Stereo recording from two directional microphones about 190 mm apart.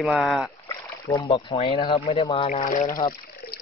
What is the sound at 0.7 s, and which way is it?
Speech, 20° left (ahead or behind).